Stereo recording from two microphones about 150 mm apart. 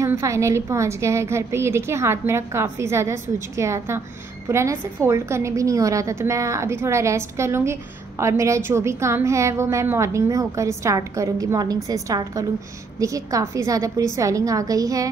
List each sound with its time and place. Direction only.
0.0 s a woman's voice: 20° right (ahead or behind)